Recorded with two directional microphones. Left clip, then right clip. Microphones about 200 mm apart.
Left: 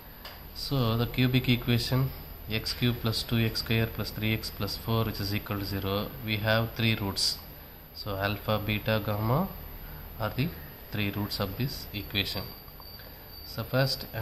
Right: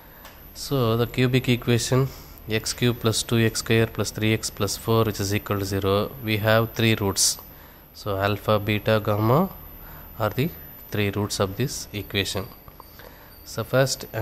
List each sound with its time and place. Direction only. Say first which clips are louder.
0.7 s speech: right 7 dB; 45° right (ahead or behind)
13.5 s speech: right 7 dB; 50° right (ahead or behind)